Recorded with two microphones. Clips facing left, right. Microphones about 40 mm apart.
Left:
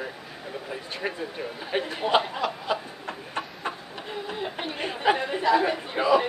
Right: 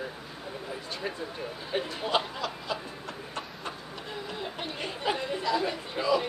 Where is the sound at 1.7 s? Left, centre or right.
Left.